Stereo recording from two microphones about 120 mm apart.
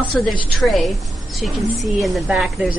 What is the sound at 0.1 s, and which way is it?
Speech, 5° left (ahead or behind).